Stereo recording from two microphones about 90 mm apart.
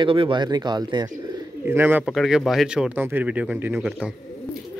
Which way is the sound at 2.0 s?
Centre (ahead or behind).